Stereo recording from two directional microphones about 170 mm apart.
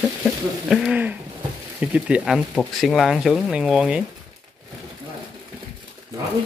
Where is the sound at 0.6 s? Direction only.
5° right (ahead or behind).